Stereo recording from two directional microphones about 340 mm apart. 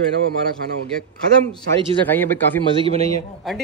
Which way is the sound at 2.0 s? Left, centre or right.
Centre.